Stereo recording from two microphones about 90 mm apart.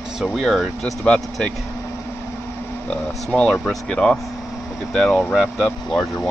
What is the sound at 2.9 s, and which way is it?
Speech, 10° left (ahead or behind).